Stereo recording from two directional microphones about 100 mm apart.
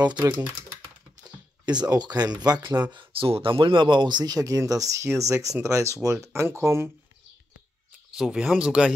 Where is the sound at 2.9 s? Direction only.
65° right (ahead or behind); by 6.9 s 25° right (ahead or behind).